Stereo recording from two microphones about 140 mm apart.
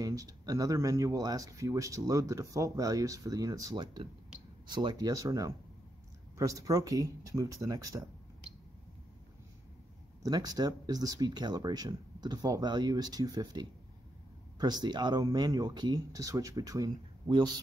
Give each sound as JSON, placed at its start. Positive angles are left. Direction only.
{"t": 0.0, "sound": "speech", "side_deg": -25}
{"t": 10.2, "sound": "speech", "side_deg": -25}